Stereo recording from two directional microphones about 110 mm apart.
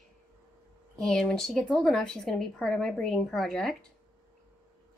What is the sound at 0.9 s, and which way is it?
Speech, 5° left (ahead or behind).